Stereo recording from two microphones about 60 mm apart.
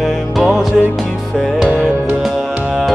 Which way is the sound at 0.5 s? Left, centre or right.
Centre.